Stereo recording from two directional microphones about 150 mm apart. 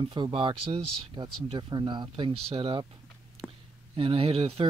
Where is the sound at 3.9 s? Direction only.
35° right (ahead or behind).